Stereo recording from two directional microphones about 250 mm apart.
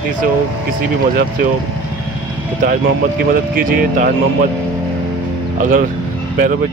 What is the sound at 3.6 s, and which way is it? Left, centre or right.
Speech, right.